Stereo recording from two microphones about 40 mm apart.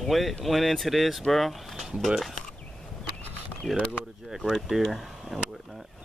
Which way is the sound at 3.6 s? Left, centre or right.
Centre.